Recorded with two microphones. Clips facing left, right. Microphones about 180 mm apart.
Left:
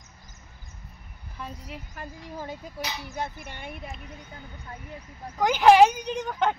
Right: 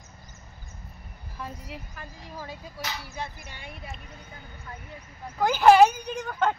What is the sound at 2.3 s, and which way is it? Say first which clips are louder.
Speech: left 3 dB; 20° left (ahead or behind).